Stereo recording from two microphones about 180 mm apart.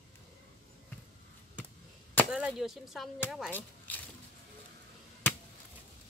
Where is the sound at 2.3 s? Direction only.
5° right (ahead or behind).